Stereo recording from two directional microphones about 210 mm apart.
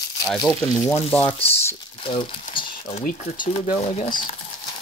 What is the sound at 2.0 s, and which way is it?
Speech, 25° left (ahead or behind).